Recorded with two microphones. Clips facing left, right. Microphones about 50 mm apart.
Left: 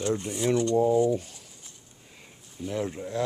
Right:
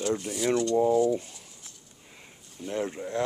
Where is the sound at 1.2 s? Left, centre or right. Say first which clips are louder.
Even; right.